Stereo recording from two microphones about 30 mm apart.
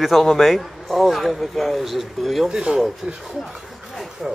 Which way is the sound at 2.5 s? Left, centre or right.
Right.